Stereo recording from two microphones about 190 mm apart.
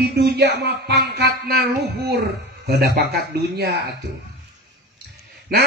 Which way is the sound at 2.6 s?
60° right (ahead or behind).